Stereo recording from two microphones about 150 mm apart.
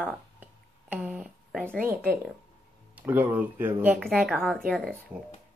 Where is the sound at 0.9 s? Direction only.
5° right (ahead or behind).